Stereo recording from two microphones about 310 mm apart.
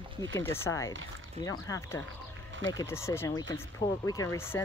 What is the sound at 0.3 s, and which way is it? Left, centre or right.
Speech, centre.